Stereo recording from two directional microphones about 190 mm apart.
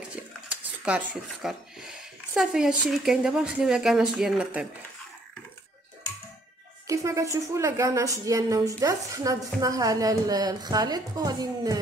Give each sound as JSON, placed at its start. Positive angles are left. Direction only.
{"t": 0.1, "sound": "speech", "side_deg": -5}
{"t": 6.9, "sound": "a woman's voice", "side_deg": -15}